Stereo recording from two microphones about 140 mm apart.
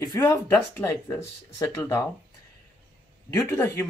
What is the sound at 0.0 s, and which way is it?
Speech, 25° left (ahead or behind).